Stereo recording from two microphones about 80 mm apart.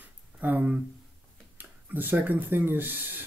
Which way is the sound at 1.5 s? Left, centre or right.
Right.